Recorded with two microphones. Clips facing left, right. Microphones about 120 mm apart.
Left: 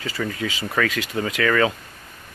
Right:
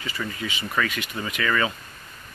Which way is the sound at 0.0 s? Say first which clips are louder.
Left 5 dB; 90° left.